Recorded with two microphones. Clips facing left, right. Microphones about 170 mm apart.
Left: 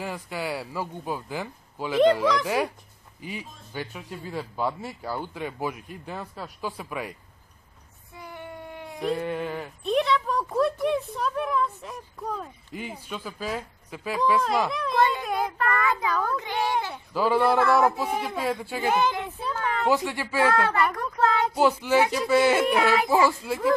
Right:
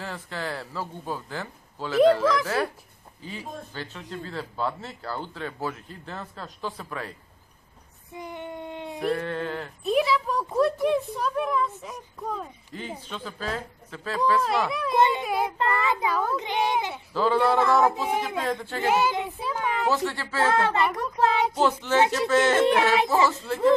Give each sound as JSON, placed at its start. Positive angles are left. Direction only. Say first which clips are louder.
{"t": 0.0, "sound": "a man's voice", "louder": "left 2 dB", "side_deg": 10}
{"t": 8.1, "sound": "a sound", "louder": "right 4 dB", "side_deg": -20}
{"t": 9.1, "sound": "speech", "louder": "left 2 dB", "side_deg": 10}
{"t": 9.8, "sound": "speech", "louder": "even", "side_deg": -5}
{"t": 14.4, "sound": "speech", "louder": "even", "side_deg": 0}
{"t": 15.0, "sound": "a child's voice", "louder": "right 2 dB", "side_deg": -20}
{"t": 15.2, "sound": "speech", "louder": "right 1 dB", "side_deg": -5}
{"t": 15.5, "sound": "a child's voice", "louder": "even", "side_deg": -25}
{"t": 17.1, "sound": "speech", "louder": "even", "side_deg": 10}
{"t": 18.9, "sound": "a woman's voice", "louder": "right 1 dB", "side_deg": -5}
{"t": 19.9, "sound": "speech", "louder": "left 2 dB", "side_deg": 15}
{"t": 20.6, "sound": "a child's voice", "louder": "even", "side_deg": -20}
{"t": 21.5, "sound": "speech", "louder": "left 2 dB", "side_deg": 10}